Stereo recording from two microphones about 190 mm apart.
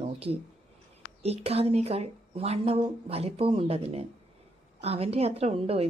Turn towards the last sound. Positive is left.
turn(degrees=-30)  # may be behind; listen again after turning